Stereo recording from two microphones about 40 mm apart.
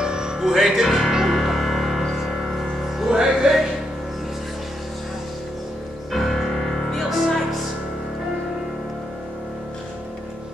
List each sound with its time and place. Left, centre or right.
0.0 s music: right; by 3.1 s centre
3.1 s music: centre
6.1 s music: centre